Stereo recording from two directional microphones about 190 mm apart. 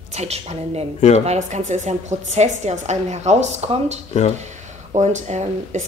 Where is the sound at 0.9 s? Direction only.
35° left (ahead or behind).